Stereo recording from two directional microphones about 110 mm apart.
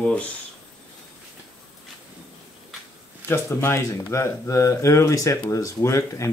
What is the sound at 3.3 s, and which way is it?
Speech, 20° left (ahead or behind).